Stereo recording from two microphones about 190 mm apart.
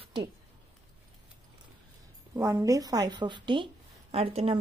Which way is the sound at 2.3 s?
15° right (ahead or behind).